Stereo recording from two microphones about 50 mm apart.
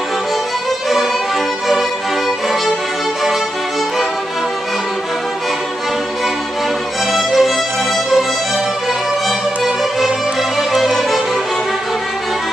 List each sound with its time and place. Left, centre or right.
7.1 s music: centre
9.6 s music: centre